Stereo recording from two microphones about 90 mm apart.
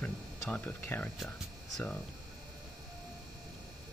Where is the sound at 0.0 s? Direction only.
15° left (ahead or behind).